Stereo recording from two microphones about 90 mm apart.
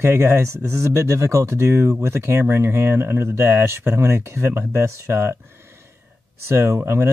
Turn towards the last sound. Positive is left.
turn(degrees=-25)  # may be behind; listen again after turning